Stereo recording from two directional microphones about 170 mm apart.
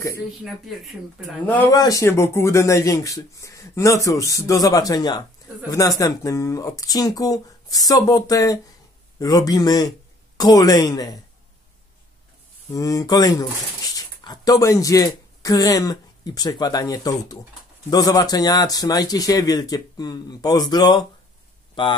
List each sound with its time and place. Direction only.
0.4 s speech: centre (ahead or behind)
1.7 s speech: 20° left (ahead or behind)
12.7 s speech: 20° left (ahead or behind)